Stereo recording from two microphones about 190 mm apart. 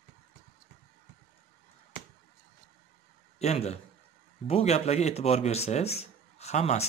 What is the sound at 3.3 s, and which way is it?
A man's voice, 35° left (ahead or behind).